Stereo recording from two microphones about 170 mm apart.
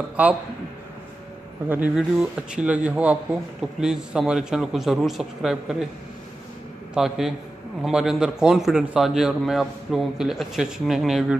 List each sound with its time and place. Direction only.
0.1 s a man's voice: 10° right (ahead or behind)
1.7 s a man's voice: 5° right (ahead or behind)
6.9 s a man's voice: centre (ahead or behind)